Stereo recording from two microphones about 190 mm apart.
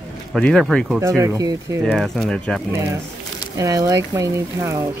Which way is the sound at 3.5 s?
15° right (ahead or behind).